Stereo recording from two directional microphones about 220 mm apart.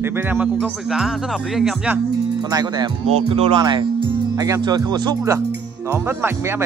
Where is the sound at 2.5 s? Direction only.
20° right (ahead or behind).